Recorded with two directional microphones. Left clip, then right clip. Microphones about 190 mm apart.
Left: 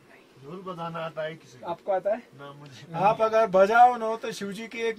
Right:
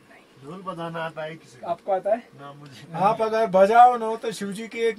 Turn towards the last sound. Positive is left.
turn(degrees=15)  # may be behind; listen again after turning